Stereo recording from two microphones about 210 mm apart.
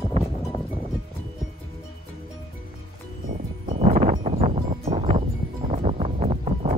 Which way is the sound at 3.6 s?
40° right (ahead or behind).